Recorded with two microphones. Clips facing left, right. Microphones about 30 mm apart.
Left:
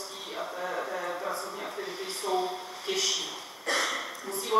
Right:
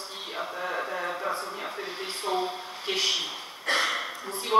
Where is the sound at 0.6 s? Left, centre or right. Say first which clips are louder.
Right 2 dB; right.